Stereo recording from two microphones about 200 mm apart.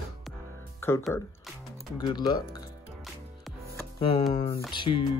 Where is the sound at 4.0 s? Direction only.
30° left (ahead or behind).